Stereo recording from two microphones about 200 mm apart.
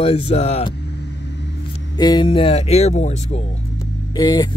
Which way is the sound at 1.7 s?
20° left (ahead or behind).